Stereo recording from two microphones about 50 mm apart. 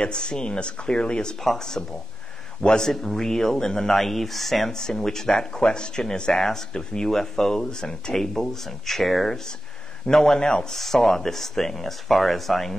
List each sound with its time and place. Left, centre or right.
0.0 s speech: centre